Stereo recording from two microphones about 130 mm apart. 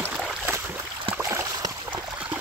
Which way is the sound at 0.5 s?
15° right (ahead or behind).